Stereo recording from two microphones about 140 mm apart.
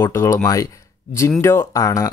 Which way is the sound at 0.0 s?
20° left (ahead or behind).